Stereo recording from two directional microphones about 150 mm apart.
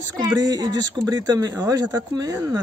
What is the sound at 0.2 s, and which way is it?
Speech, 25° right (ahead or behind).